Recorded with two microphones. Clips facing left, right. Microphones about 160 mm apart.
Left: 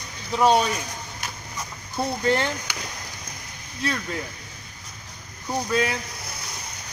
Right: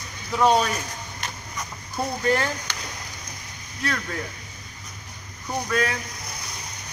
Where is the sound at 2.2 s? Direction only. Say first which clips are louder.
Even; 25° left (ahead or behind).